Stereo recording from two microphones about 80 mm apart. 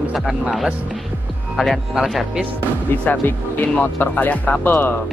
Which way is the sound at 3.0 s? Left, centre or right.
Left.